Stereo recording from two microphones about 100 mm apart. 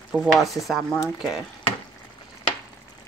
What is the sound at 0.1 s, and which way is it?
Speech, 5° right (ahead or behind).